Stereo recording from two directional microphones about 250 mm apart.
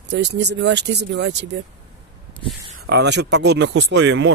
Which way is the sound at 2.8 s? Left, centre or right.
Right.